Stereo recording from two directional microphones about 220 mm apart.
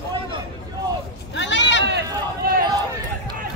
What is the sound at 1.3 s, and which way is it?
Sheep, 55° left (ahead or behind).